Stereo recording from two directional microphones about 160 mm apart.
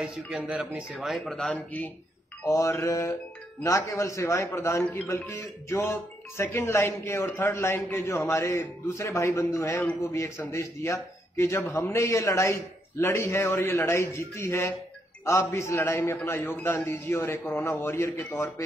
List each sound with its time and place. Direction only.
0.0 s speech: 5° right (ahead or behind)
2.4 s mantra: 20° left (ahead or behind)
3.6 s a man's voice: 20° left (ahead or behind)